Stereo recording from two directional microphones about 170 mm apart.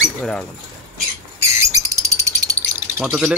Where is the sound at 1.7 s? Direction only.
20° right (ahead or behind).